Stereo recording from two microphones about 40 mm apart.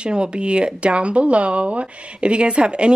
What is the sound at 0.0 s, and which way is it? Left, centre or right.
Speech, right.